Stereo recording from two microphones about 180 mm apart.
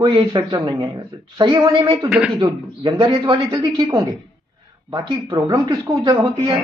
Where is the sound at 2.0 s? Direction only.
5° right (ahead or behind).